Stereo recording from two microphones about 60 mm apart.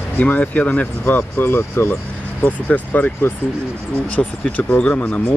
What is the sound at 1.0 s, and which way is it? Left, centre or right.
Speech, left.